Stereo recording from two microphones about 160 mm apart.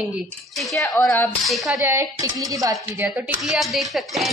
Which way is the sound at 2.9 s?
10° right (ahead or behind).